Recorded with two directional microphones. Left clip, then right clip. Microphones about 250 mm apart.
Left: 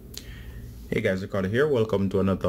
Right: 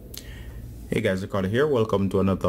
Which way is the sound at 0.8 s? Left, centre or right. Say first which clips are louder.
Right 1 dB; centre.